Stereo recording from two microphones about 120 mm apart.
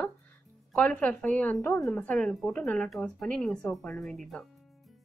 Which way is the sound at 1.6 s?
25° left (ahead or behind).